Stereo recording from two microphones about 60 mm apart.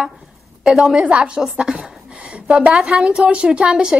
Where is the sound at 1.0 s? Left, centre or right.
Centre.